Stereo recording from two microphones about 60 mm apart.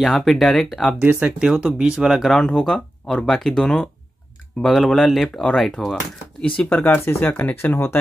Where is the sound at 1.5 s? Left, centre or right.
Centre.